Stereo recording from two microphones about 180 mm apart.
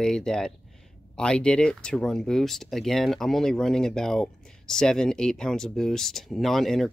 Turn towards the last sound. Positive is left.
turn(degrees=0)  # may be behind; listen again after turning